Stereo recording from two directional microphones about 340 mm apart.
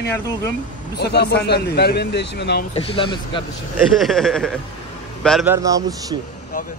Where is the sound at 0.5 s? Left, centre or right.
Left.